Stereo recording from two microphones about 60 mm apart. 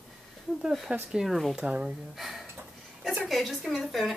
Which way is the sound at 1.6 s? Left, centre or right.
Centre.